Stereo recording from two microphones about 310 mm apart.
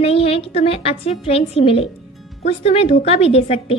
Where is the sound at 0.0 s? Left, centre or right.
Centre.